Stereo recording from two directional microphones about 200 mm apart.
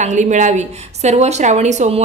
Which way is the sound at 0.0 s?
35° right (ahead or behind).